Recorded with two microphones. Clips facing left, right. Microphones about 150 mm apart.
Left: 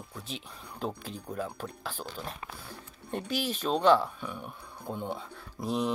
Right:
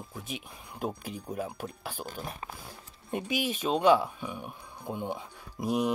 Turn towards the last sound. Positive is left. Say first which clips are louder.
# right 2 dB
turn(degrees=-15)  # may be behind; listen again after turning